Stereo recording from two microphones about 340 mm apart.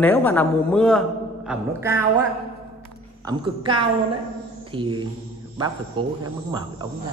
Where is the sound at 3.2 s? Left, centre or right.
Centre.